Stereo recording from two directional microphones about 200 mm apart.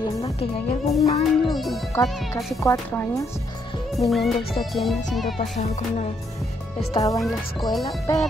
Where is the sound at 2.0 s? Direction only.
15° left (ahead or behind).